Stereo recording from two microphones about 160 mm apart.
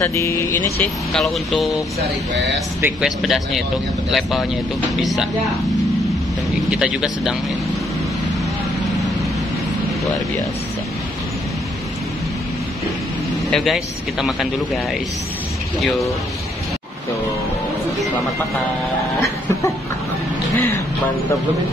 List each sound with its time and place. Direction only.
0.0 s speech: 20° left (ahead or behind)
1.2 s speech: centre (ahead or behind)
2.8 s speech: centre (ahead or behind)
6.8 s speech: 5° right (ahead or behind)
13.5 s speech: centre (ahead or behind)